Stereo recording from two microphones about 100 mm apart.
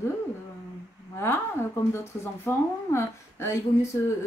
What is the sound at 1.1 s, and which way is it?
A woman's voice, 25° left (ahead or behind).